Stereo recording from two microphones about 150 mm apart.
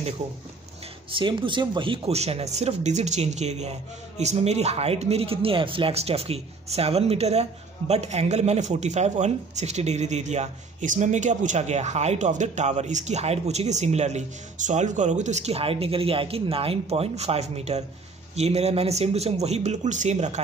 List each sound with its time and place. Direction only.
1.1 s speech: 35° right (ahead or behind); by 20.3 s 50° right (ahead or behind)